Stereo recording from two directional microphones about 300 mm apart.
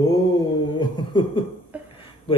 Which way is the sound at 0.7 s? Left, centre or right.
Centre.